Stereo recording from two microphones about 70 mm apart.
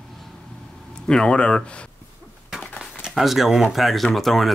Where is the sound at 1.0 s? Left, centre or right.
Centre.